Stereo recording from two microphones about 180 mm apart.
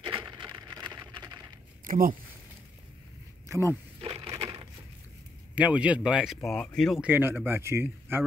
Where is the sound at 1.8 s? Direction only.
50° right (ahead or behind).